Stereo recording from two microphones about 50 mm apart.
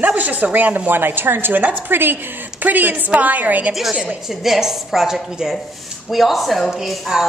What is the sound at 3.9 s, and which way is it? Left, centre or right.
Speech, centre.